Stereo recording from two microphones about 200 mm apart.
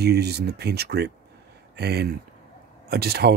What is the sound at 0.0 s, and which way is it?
Speech, 55° right (ahead or behind).